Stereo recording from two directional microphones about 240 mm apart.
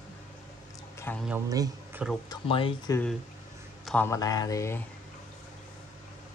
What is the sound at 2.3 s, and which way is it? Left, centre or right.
Speech, left.